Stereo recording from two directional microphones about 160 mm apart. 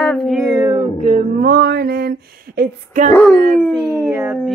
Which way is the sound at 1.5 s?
80° right.